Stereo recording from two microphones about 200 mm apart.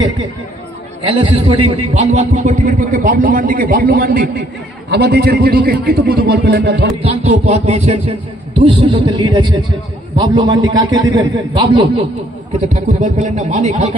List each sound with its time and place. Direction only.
1.0 s a man's voice: 25° right (ahead or behind); by 6.9 s 55° right (ahead or behind)
7.0 s speech: 30° right (ahead or behind)
12.5 s a man's voice: 35° right (ahead or behind)